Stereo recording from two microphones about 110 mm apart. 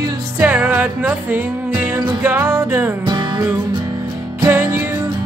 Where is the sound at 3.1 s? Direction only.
45° right (ahead or behind).